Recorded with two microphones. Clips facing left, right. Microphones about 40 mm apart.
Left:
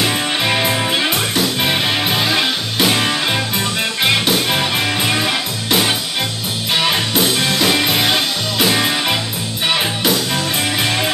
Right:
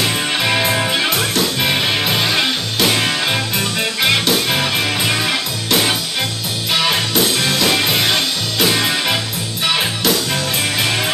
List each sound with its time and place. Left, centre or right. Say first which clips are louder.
0.0 s music: even; centre